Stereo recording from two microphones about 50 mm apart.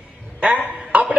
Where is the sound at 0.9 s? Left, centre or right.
Right.